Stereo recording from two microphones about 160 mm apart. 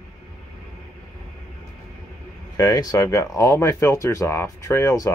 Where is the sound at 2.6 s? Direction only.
20° left (ahead or behind).